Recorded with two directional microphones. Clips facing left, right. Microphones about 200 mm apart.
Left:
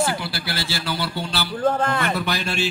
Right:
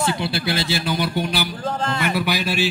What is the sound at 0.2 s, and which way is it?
A man's voice, 25° right (ahead or behind).